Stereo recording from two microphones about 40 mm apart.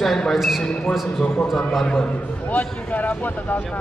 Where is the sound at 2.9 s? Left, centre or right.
Left.